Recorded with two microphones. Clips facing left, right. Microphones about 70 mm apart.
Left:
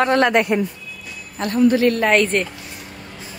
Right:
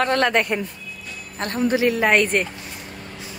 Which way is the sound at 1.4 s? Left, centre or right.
Right.